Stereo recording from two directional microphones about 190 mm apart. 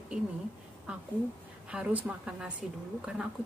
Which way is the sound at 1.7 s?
5° right (ahead or behind).